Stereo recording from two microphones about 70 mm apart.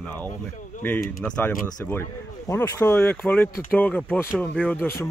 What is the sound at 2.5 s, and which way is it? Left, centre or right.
Speech, left.